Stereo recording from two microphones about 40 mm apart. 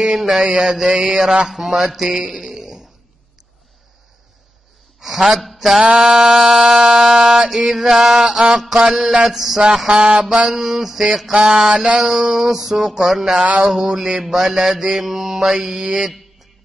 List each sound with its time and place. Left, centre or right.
0.0 s mantra: centre
1.9 s speech: centre
5.0 s a man's voice: centre
5.8 s mantra: right
7.4 s mantra: centre
9.8 s mantra: right
10.5 s mantra: centre